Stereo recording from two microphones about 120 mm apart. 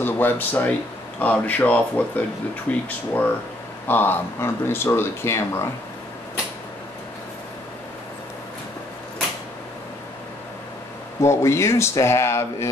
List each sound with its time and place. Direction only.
0.0 s speech: 15° left (ahead or behind)
11.1 s speech: 25° left (ahead or behind)